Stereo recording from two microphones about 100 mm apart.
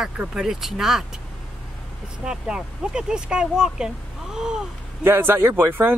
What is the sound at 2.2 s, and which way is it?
Speech, 10° right (ahead or behind).